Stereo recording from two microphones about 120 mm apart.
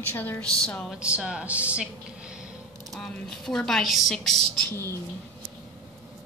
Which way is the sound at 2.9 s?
Centre (ahead or behind).